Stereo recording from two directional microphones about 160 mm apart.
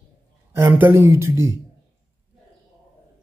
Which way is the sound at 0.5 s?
15° right (ahead or behind).